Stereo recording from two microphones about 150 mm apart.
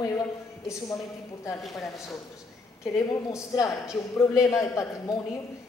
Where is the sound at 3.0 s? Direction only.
20° left (ahead or behind).